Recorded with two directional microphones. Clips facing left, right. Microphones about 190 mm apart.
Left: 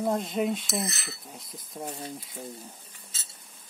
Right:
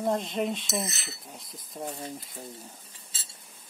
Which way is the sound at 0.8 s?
25° right (ahead or behind).